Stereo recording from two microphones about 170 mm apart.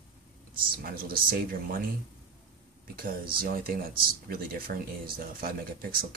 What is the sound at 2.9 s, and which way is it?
Speech, 60° right (ahead or behind).